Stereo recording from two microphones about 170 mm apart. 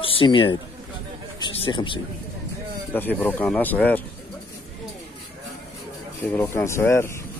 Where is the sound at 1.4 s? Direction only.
25° left (ahead or behind).